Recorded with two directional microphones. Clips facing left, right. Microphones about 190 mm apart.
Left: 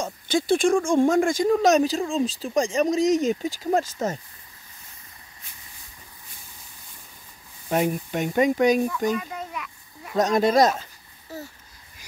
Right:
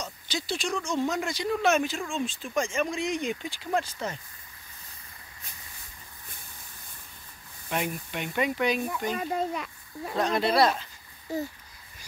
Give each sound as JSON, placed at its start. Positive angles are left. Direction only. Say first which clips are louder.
{"t": 0.0, "sound": "speech", "louder": "left 10 dB", "side_deg": 50}
{"t": 7.7, "sound": "speech", "louder": "left 8 dB", "side_deg": 45}
{"t": 9.1, "sound": "a child's voice", "louder": "right 1 dB", "side_deg": -35}
{"t": 10.1, "sound": "speech", "louder": "left 5 dB", "side_deg": 45}